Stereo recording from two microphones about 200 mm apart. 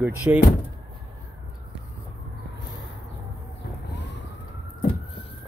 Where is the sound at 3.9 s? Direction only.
60° left (ahead or behind).